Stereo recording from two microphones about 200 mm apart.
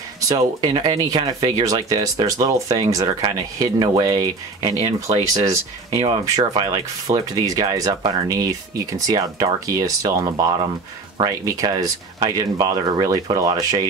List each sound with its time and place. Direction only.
0.3 s speech: 20° right (ahead or behind)